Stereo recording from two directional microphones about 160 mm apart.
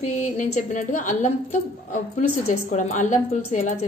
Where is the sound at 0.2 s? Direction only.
45° left (ahead or behind).